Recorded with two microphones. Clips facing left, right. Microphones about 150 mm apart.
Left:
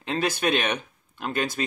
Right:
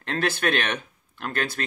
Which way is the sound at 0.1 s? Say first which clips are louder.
Even; 15° left (ahead or behind).